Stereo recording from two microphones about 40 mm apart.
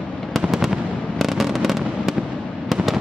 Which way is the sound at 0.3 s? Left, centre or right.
Centre.